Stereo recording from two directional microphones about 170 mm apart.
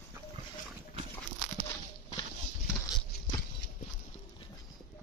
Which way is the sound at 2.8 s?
25° left (ahead or behind).